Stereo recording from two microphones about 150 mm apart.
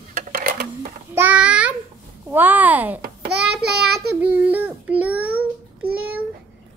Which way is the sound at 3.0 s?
90° right.